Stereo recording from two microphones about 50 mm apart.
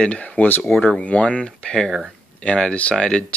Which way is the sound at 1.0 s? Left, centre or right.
Left.